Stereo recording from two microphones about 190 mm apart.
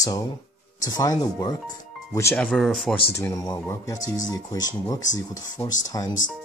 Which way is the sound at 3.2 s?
15° left (ahead or behind).